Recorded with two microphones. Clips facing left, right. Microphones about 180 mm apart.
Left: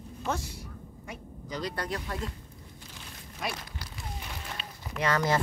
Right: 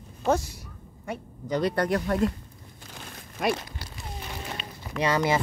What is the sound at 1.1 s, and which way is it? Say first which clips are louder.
Speech: right 10 dB; 60° right (ahead or behind).